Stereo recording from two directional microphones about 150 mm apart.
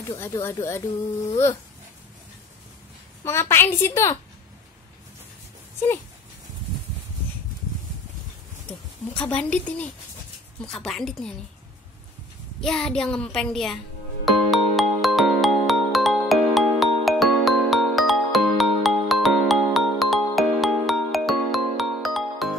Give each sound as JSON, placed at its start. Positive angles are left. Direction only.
{"t": 0.1, "sound": "speech", "side_deg": 20}
{"t": 3.3, "sound": "a woman's voice", "side_deg": 15}
{"t": 9.2, "sound": "a woman's voice", "side_deg": 10}
{"t": 12.5, "sound": "a child's voice", "side_deg": 5}
{"t": 14.2, "sound": "music", "side_deg": 0}